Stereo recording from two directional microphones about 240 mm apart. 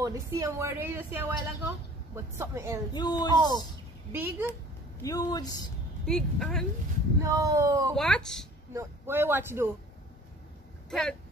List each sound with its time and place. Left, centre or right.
0.0 s a woman's voice: centre
2.9 s a man's voice: centre
3.3 s a woman's voice: centre
5.0 s a man's voice: centre
6.0 s speech: centre
7.2 s a woman's voice: centre
7.9 s speech: centre
8.7 s a woman's voice: centre
10.9 s speech: centre